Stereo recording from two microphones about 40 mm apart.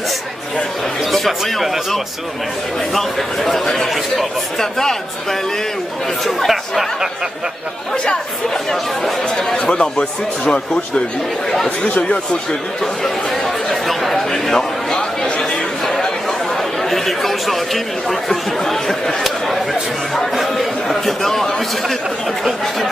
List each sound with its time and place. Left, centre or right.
1.1 s speech: centre
6.2 s speech: centre
9.7 s speech: left
13.7 s chatter: centre
14.3 s a sound: centre
16.9 s speech: centre